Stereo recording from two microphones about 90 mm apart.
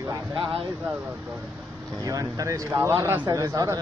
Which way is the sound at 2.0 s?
40° right (ahead or behind).